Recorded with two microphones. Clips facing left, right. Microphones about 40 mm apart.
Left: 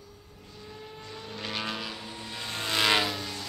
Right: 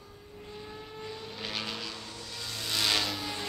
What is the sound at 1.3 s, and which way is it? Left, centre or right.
Vehicle, centre.